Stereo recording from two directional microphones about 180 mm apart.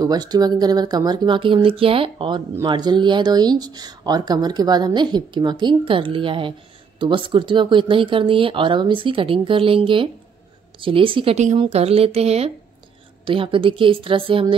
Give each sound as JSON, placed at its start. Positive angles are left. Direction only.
{"t": 0.0, "sound": "speech", "side_deg": -20}